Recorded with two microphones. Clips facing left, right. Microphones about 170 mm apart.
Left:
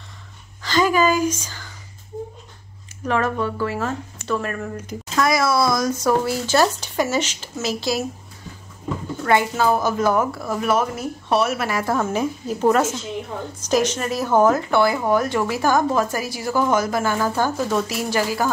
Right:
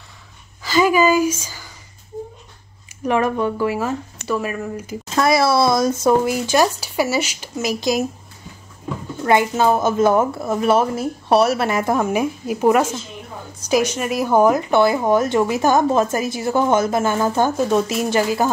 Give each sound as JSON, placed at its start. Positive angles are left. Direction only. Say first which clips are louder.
{"t": 0.6, "sound": "a woman's voice", "louder": "right 3 dB", "side_deg": -10}
{"t": 3.1, "sound": "speech", "louder": "right 3 dB", "side_deg": -15}
{"t": 5.1, "sound": "speech", "louder": "right 3 dB", "side_deg": -30}
{"t": 9.2, "sound": "speech", "louder": "right 3 dB", "side_deg": -20}